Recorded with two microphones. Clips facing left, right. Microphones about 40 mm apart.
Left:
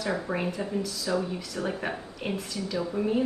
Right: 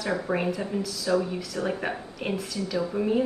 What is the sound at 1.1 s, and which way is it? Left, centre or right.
Speech, right.